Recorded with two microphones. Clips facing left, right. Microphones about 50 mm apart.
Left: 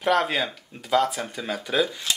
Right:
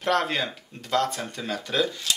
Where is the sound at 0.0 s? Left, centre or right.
Centre.